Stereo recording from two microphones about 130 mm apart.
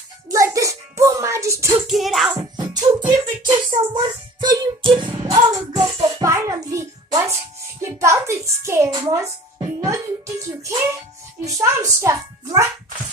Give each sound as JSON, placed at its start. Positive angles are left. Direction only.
{"t": 0.3, "sound": "music", "side_deg": -25}
{"t": 1.9, "sound": "music", "side_deg": 0}
{"t": 3.1, "sound": "child singing", "side_deg": -35}
{"t": 7.8, "sound": "a sound", "side_deg": -20}
{"t": 9.8, "sound": "music", "side_deg": -25}
{"t": 11.4, "sound": "a sound", "side_deg": -25}